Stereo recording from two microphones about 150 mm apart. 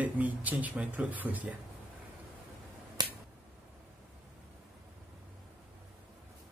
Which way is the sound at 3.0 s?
30° right (ahead or behind).